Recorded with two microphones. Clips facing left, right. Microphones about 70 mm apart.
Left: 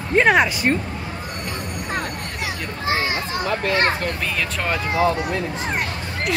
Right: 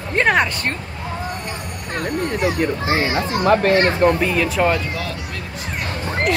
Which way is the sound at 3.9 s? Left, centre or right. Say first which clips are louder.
Right 10 dB; right.